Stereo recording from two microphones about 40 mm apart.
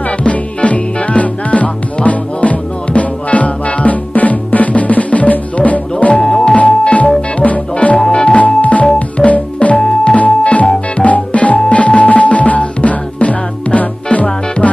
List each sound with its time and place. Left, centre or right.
0.2 s music: left
6.1 s music: centre
6.5 s music: left
8.5 s music: left
9.8 s music: centre
10.1 s music: left